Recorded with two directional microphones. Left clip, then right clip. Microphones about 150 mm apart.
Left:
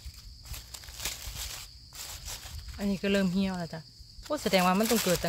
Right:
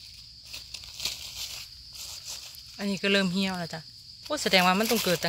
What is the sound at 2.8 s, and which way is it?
Speech, 5° right (ahead or behind).